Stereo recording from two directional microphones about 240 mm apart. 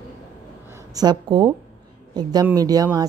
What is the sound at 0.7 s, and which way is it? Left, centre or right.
A woman's voice, centre.